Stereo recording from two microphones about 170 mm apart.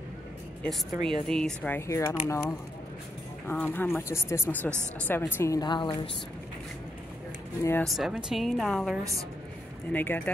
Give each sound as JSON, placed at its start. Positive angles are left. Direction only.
{"t": 1.0, "sound": "speech", "side_deg": 0}
{"t": 5.4, "sound": "a woman's voice", "side_deg": 20}
{"t": 7.8, "sound": "a woman's voice", "side_deg": 0}